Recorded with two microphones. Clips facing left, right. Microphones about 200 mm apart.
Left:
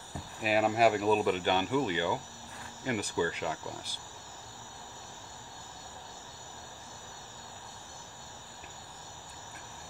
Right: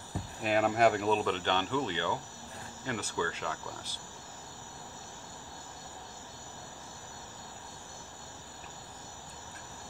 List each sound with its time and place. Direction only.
0.4 s speech: 5° left (ahead or behind)